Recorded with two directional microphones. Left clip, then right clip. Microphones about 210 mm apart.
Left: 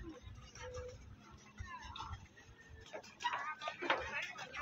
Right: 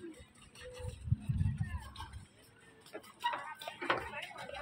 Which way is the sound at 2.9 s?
50° right (ahead or behind).